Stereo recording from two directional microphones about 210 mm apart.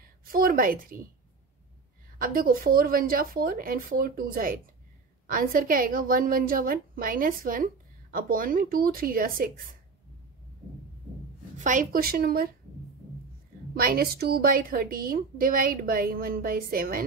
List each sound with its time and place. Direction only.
0.2 s a woman's voice: 45° right (ahead or behind)
2.1 s a woman's voice: 40° right (ahead or behind)
11.5 s a woman's voice: 35° right (ahead or behind)
13.7 s a woman's voice: 45° right (ahead or behind)